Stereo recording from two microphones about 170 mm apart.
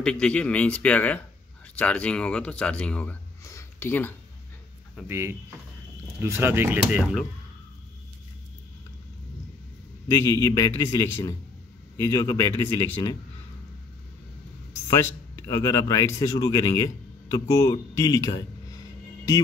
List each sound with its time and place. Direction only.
0.0 s speech: 5° left (ahead or behind)
5.0 s speech: 15° right (ahead or behind)
10.3 s speech: 20° left (ahead or behind)
14.9 s a man's voice: 20° left (ahead or behind)